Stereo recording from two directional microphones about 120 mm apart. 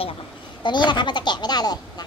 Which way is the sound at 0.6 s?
40° left (ahead or behind).